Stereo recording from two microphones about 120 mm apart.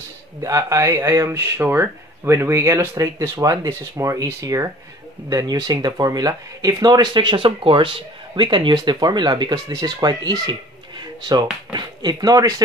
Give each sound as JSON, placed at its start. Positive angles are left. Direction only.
{"t": 0.4, "sound": "speech", "side_deg": -25}
{"t": 11.0, "sound": "a sound", "side_deg": -35}
{"t": 11.7, "sound": "speech", "side_deg": -35}